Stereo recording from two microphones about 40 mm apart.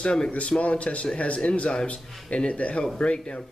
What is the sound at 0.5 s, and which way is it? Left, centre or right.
Speech, left.